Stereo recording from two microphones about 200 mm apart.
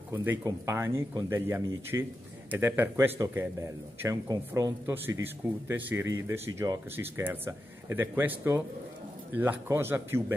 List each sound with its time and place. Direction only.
0.1 s speech: 10° right (ahead or behind)